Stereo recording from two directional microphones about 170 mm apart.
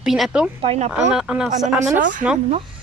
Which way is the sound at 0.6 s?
35° right (ahead or behind).